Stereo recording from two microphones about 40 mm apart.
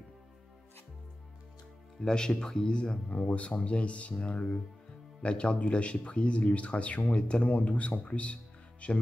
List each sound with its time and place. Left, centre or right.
2.0 s speech: centre
3.1 s speech: left
7.4 s speech: left